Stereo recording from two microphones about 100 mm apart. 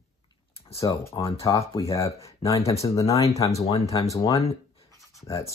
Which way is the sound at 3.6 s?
90° left.